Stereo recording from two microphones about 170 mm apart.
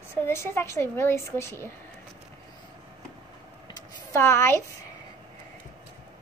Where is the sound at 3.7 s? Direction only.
15° left (ahead or behind).